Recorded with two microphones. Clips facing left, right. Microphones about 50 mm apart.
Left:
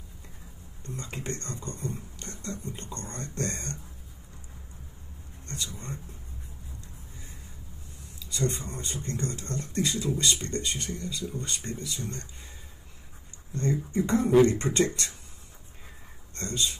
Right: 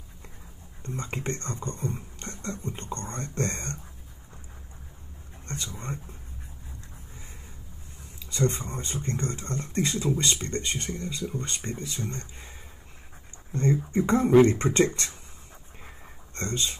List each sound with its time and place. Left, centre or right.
0.8 s speech: right
5.7 s speech: right
8.2 s speech: right
13.5 s speech: right
16.3 s speech: right